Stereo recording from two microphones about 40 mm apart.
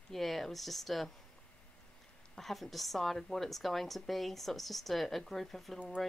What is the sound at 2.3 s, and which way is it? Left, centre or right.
A woman's voice, centre.